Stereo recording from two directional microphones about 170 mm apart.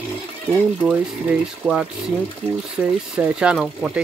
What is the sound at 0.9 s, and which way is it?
Speech, 5° right (ahead or behind).